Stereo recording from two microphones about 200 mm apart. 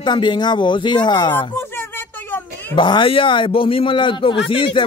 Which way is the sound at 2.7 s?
25° left (ahead or behind).